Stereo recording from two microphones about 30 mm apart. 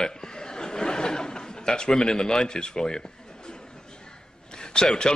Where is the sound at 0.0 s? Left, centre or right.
Left.